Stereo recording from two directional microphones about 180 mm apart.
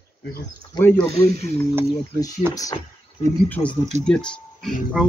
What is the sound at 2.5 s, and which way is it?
Speech, 20° left (ahead or behind).